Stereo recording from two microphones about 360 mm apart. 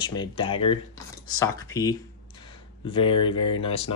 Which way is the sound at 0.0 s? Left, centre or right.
Centre.